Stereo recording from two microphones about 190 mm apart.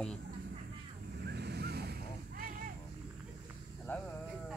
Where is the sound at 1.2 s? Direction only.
60° right (ahead or behind).